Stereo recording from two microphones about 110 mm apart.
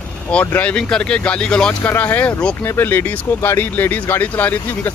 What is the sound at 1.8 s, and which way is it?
Speech, 20° left (ahead or behind).